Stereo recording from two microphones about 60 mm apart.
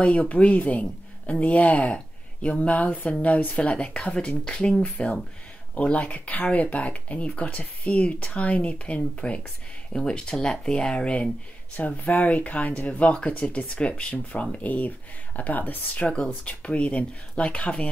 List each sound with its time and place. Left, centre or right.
0.1 s speech: left
11.7 s speech: left
16.1 s speech: centre